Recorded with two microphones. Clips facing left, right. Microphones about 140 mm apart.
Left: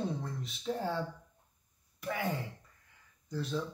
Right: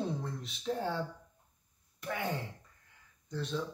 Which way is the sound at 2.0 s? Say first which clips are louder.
Left 1 dB; centre (ahead or behind).